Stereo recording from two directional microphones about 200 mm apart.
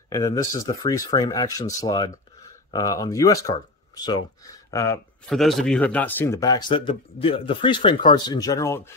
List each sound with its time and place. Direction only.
0.1 s speech: 15° left (ahead or behind)
5.3 s speech: centre (ahead or behind)